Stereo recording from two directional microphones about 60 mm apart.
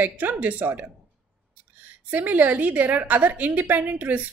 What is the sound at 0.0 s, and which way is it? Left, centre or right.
Speech, right.